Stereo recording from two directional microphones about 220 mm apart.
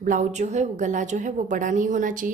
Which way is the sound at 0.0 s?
35° right (ahead or behind).